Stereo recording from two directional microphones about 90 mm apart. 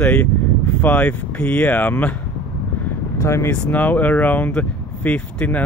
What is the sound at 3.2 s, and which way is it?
Speech, 30° left (ahead or behind).